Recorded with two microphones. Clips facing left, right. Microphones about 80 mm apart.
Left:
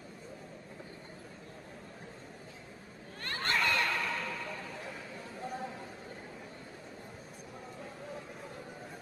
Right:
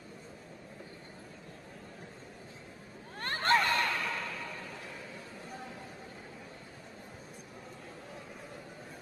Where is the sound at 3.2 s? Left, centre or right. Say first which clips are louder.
Right 5 dB; right.